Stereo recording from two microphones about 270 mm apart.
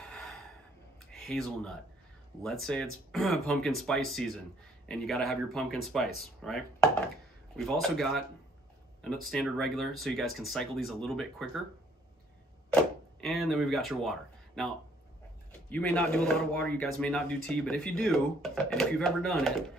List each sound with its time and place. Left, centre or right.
0.0 s a sound: centre
1.2 s speech: centre
13.2 s speech: centre
15.7 s speech: centre